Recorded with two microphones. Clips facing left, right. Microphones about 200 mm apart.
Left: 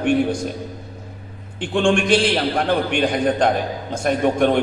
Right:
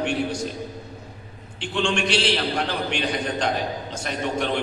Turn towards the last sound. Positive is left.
turn(degrees=50)  # may be behind; listen again after turning